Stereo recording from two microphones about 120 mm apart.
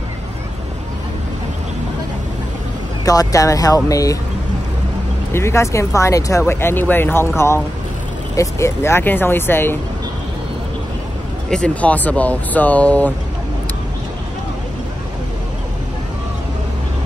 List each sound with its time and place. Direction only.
3.1 s speech: 30° left (ahead or behind)
5.3 s speech: 20° left (ahead or behind)
11.5 s speech: 10° left (ahead or behind)